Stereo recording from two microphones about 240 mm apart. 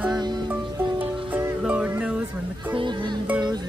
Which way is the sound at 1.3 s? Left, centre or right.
Centre.